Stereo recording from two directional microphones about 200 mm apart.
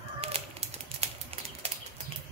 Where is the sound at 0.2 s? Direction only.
30° right (ahead or behind).